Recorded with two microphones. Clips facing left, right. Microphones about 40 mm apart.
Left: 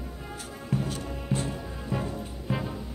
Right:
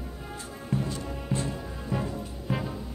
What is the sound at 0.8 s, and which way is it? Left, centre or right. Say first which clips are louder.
Music: even; left.